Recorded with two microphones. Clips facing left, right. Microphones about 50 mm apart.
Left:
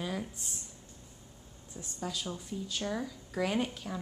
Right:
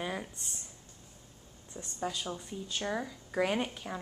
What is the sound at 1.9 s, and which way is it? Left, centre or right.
Speech, centre.